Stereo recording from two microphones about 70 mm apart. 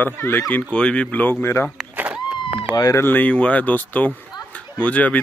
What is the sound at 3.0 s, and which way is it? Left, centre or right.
Speech, left.